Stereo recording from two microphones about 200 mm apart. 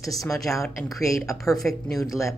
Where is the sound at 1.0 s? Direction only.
15° left (ahead or behind).